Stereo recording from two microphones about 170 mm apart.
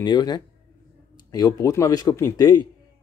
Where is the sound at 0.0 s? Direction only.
25° left (ahead or behind).